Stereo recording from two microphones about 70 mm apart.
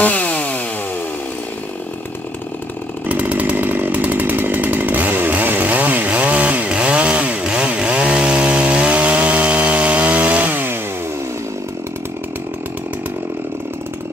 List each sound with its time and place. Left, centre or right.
0.0 s chainsaw: left
3.1 s chainsaw: centre